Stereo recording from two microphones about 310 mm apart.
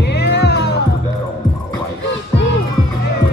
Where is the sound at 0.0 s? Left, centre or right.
Left.